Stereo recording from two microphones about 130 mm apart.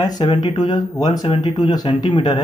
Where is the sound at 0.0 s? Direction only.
30° left (ahead or behind).